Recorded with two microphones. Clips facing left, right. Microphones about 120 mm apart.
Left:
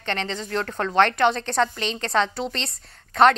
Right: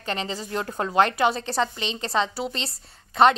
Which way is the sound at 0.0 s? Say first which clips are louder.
Left 1 dB; 5° right (ahead or behind).